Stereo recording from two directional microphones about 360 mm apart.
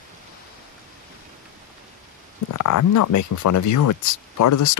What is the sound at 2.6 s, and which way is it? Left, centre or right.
Speech, left.